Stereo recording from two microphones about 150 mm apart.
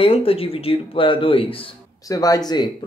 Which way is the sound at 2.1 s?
25° left (ahead or behind).